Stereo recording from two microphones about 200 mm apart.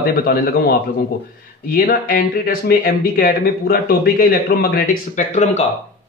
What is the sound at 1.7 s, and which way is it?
A man's voice, 45° left (ahead or behind).